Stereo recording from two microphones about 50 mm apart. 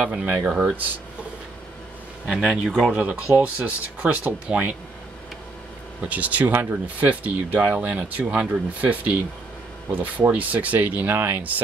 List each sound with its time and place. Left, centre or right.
0.0 s speech: right
2.2 s speech: centre
2.9 s speech: right
6.0 s speech: right